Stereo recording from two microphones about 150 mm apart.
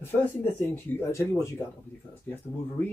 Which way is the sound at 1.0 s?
15° left (ahead or behind).